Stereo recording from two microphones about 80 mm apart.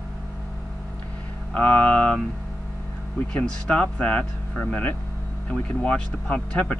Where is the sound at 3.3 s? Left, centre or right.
Centre.